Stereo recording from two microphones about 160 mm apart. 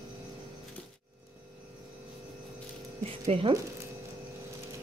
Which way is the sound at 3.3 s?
35° right (ahead or behind).